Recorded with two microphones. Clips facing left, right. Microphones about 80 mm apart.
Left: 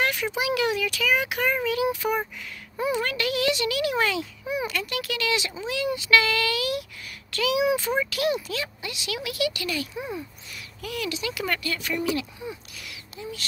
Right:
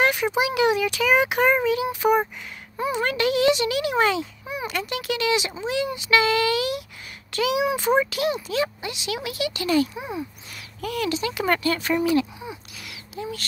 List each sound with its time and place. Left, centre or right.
0.0 s a child's voice: right
9.9 s speech: centre
10.5 s a child's voice: right